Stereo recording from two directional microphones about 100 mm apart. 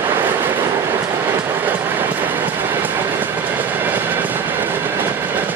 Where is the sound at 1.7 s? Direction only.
20° right (ahead or behind).